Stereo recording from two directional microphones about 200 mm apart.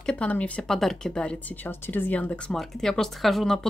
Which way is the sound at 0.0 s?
5° left (ahead or behind).